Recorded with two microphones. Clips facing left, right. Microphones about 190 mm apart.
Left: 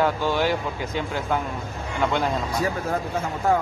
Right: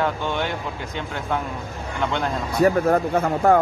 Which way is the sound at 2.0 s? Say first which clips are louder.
Left 1 dB; 5° left (ahead or behind).